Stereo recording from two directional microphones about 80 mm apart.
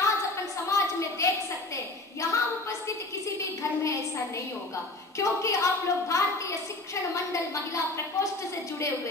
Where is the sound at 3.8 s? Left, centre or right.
Left.